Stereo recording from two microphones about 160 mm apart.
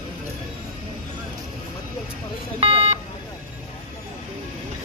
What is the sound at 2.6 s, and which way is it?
Vehicle, 40° right (ahead or behind).